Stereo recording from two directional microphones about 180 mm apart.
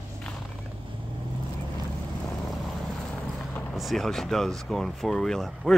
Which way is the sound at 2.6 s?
Centre (ahead or behind).